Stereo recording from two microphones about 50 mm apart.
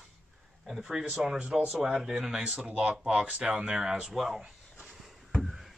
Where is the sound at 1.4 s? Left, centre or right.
Right.